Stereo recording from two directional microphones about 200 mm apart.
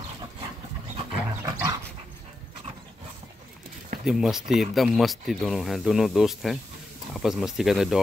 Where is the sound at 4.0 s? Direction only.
5° right (ahead or behind).